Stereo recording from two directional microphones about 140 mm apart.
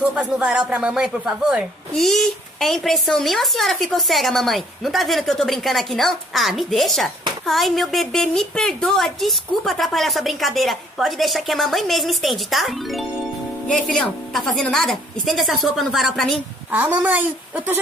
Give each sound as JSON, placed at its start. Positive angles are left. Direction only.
{"t": 0.0, "sound": "speech", "side_deg": -5}
{"t": 16.7, "sound": "a woman's voice", "side_deg": -10}